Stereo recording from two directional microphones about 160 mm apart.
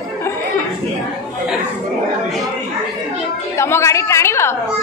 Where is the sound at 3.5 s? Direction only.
15° left (ahead or behind).